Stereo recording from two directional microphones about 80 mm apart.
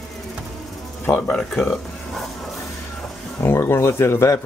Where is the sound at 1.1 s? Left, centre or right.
Centre.